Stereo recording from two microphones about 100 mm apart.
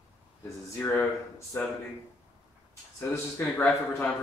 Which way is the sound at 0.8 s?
20° left (ahead or behind).